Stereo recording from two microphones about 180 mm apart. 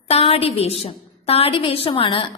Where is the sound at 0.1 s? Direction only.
35° left (ahead or behind).